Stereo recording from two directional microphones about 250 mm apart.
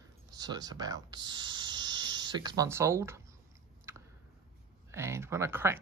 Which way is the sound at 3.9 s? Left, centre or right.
Centre.